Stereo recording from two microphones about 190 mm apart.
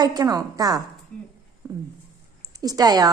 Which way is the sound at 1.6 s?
15° right (ahead or behind).